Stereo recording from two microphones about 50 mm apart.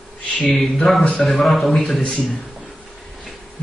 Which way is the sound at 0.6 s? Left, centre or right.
Centre.